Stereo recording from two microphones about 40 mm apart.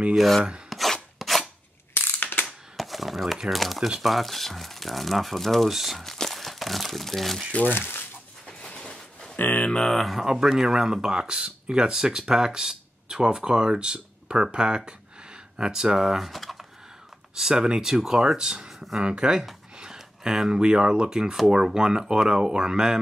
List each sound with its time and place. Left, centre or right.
0.1 s speech: centre
0.7 s chopping: centre
2.0 s ratchet: left
2.8 s a sound: centre
3.4 s speech: centre
6.0 s crumpling: centre
7.7 s speech: left
8.5 s a sound: left
9.4 s a sound: left
9.8 s speech: centre
10.2 s speech: centre
16.3 s a sound: centre
17.4 s speech: centre